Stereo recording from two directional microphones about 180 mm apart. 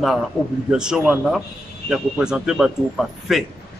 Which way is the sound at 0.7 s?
5° right (ahead or behind).